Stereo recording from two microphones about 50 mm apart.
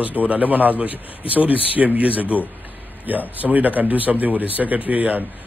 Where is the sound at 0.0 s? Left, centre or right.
Right.